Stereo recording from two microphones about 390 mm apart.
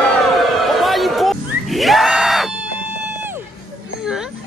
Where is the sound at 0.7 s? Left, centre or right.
Centre.